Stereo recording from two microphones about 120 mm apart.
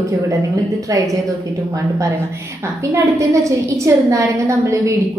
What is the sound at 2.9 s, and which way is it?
A woman's voice, 25° right (ahead or behind).